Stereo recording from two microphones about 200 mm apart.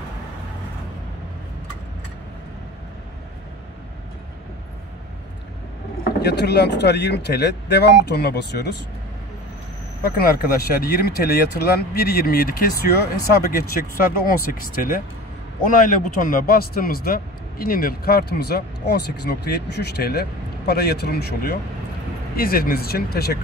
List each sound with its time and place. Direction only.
6.2 s speech: 55° left (ahead or behind)
10.0 s a man's voice: 50° left (ahead or behind)